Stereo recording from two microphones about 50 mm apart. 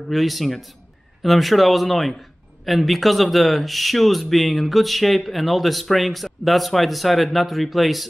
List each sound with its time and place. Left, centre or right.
0.1 s speech: centre